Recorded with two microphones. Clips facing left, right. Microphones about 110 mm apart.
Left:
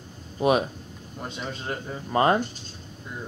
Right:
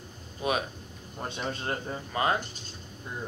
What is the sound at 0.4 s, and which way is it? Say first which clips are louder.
Speech: left 8 dB; 30° left (ahead or behind).